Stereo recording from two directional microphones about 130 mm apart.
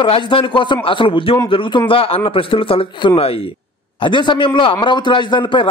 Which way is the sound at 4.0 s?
40° left (ahead or behind).